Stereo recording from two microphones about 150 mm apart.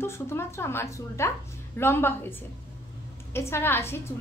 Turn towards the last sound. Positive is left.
turn(degrees=15)  # may be behind; listen again after turning